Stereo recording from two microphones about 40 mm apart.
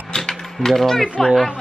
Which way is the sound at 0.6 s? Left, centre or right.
Centre.